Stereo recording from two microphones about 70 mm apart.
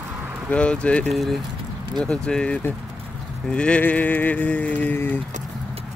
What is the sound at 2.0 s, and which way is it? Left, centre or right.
Speech, centre.